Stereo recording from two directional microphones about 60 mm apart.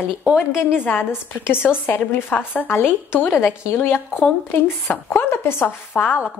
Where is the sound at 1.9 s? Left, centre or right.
Left.